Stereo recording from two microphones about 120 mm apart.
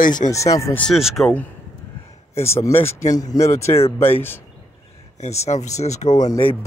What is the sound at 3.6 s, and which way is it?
Speech, 60° left (ahead or behind).